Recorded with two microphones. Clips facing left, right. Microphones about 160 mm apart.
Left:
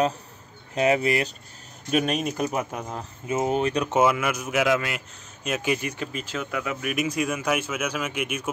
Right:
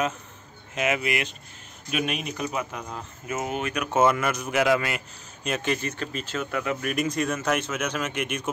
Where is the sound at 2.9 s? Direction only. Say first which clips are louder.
Left 4 dB; 25° left (ahead or behind).